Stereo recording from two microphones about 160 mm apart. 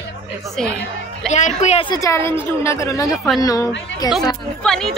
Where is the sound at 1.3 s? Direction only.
45° left (ahead or behind).